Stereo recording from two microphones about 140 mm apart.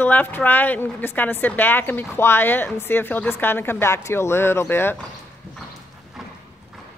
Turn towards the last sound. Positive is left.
turn(degrees=0)  # may be behind; listen again after turning